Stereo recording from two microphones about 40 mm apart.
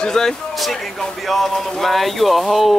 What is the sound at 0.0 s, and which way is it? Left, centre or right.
Speech, centre.